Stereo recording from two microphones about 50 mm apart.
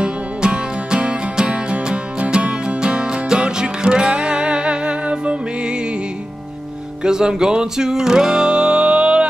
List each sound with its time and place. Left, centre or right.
0.0 s music: centre
7.0 s music: centre